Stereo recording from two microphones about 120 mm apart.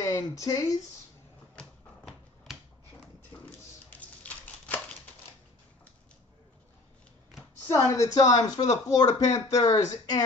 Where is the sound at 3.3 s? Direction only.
35° left (ahead or behind).